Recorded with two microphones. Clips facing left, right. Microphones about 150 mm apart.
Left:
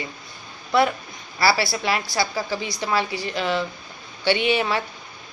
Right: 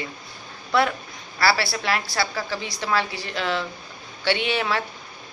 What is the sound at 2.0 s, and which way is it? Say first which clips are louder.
Speech: left 2 dB; 20° left (ahead or behind).